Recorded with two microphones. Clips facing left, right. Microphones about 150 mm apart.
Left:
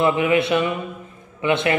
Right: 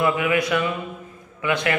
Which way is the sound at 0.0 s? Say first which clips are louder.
Left 3 dB; 25° left (ahead or behind).